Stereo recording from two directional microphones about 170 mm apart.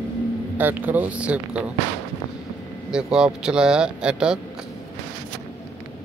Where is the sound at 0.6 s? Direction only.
10° right (ahead or behind).